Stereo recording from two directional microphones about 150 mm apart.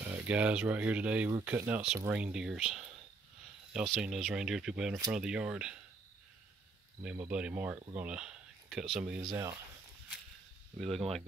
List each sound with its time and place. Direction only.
0.1 s speech: 10° right (ahead or behind)
7.0 s speech: 10° right (ahead or behind)
10.8 s speech: centre (ahead or behind)